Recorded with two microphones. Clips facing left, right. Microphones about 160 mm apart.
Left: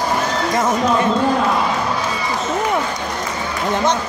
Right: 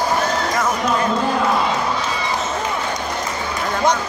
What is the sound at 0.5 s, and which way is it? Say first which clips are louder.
Run: left 3 dB; 30° left (ahead or behind).